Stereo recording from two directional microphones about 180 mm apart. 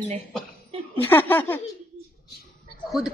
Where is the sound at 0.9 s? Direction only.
10° left (ahead or behind).